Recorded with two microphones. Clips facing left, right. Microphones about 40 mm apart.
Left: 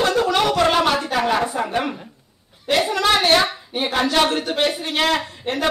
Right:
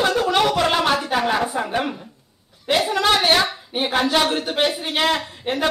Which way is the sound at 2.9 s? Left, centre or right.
Centre.